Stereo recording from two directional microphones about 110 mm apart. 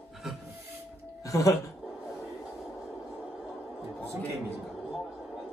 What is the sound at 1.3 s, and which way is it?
Speech, 30° left (ahead or behind).